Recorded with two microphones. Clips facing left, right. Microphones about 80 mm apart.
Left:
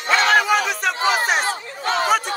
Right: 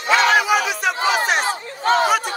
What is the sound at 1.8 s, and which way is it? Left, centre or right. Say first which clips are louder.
Chatter: right 5 dB; right.